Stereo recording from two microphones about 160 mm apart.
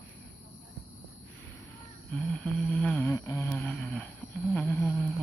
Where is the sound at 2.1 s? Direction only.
5° left (ahead or behind).